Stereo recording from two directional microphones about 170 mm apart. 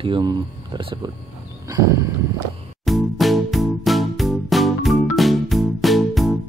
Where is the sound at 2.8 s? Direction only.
Centre (ahead or behind).